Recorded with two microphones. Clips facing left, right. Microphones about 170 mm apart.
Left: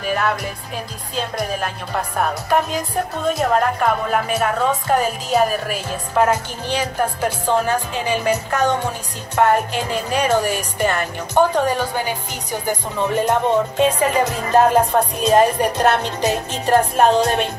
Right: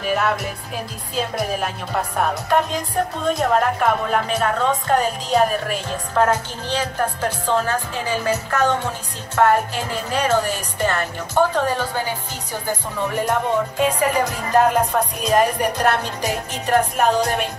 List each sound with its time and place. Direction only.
0.0 s music: centre (ahead or behind)
1.1 s speech: 5° right (ahead or behind); by 12.2 s 15° left (ahead or behind)
12.6 s music: 20° left (ahead or behind)